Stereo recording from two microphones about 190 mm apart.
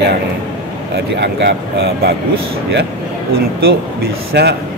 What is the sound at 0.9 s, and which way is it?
Speech, 65° right (ahead or behind).